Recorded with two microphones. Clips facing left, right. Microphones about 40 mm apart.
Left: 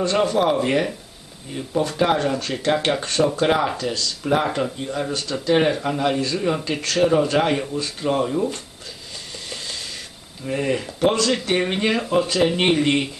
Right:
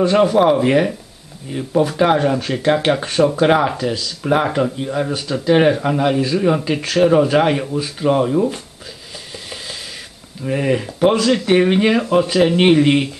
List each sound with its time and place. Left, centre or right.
0.0 s speech: centre
10.4 s speech: centre